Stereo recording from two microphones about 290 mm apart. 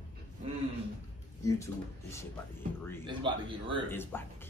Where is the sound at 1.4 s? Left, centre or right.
Centre.